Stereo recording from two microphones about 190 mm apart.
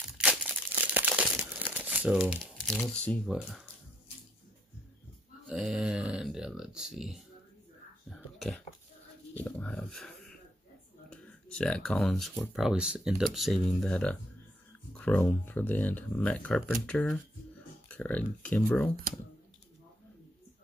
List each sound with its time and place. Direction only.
0.2 s crumpling: 10° right (ahead or behind)
2.5 s speech: 5° left (ahead or behind)
5.5 s speech: 5° right (ahead or behind)
8.1 s a sound: centre (ahead or behind)
9.4 s speech: 5° left (ahead or behind)